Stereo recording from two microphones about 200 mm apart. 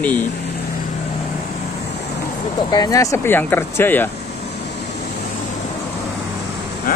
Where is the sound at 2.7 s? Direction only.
20° left (ahead or behind).